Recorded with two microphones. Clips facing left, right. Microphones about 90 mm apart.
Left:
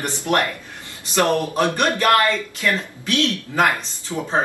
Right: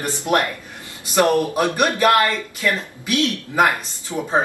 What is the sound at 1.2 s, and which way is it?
A man's voice, 15° right (ahead or behind).